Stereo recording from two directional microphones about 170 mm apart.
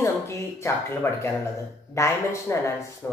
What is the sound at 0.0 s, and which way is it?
Speech, 15° left (ahead or behind).